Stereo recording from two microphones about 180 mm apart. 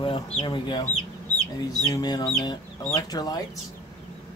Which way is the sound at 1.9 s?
25° left (ahead or behind).